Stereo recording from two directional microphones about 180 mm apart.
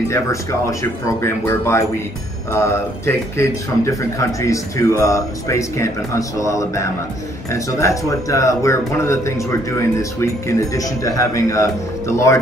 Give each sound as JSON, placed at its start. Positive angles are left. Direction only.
{"t": 0.1, "sound": "speech", "side_deg": 15}